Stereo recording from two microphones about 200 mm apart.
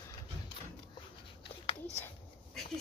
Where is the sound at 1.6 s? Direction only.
35° left (ahead or behind).